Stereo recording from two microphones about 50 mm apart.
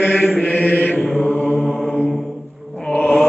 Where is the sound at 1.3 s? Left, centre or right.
Left.